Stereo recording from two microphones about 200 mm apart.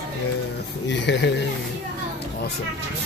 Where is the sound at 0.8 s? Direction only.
65° left (ahead or behind).